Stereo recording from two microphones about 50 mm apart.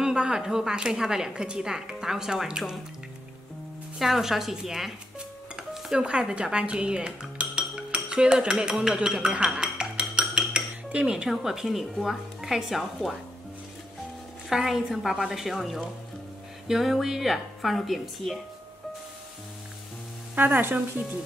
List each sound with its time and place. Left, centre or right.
0.0 s a woman's voice: centre
4.0 s a woman's voice: centre
5.6 s dishes: centre
6.0 s speech: right
9.5 s dishes: centre
11.2 s speech: centre
14.5 s speech: centre
20.3 s speech: right